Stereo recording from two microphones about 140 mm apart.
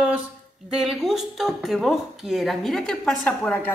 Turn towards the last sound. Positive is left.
turn(degrees=10)  # may be behind; listen again after turning